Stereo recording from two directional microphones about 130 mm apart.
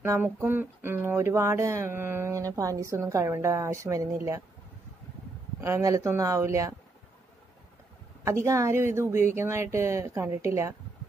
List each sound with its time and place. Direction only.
0.0 s speech: 20° right (ahead or behind)
5.6 s speech: 20° right (ahead or behind)
8.5 s speech: 25° right (ahead or behind)